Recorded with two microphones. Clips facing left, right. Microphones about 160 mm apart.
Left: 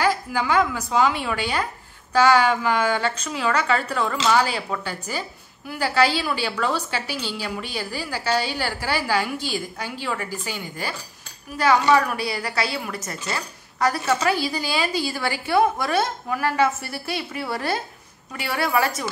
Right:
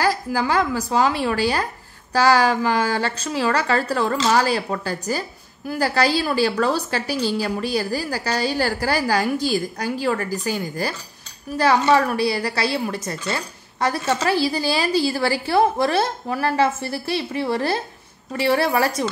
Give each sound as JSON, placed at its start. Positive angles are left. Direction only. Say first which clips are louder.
{"t": 0.0, "sound": "a woman's voice", "louder": "right 1 dB", "side_deg": -35}